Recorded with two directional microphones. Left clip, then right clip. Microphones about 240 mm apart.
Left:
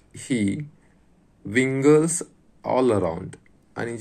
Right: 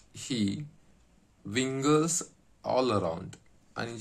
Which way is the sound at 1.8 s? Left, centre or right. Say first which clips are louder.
Left 8 dB; centre.